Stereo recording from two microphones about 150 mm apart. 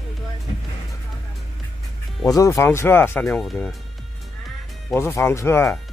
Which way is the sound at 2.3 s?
20° left (ahead or behind).